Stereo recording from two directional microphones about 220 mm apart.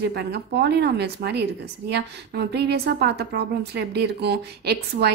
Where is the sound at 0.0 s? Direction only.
50° right (ahead or behind).